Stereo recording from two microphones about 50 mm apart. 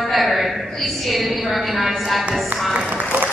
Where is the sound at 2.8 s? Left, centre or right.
Right.